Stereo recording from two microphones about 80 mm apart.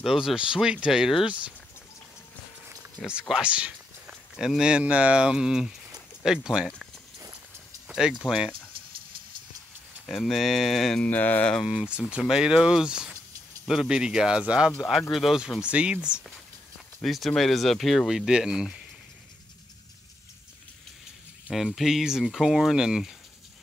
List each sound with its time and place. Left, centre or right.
0.0 s speech: centre
3.2 s a sound: centre
4.5 s speech: centre
7.9 s speech: centre
10.0 s speech: centre
11.1 s speech: left
11.6 s speech: centre
14.8 s speech: centre
17.0 s speech: centre
21.7 s speech: centre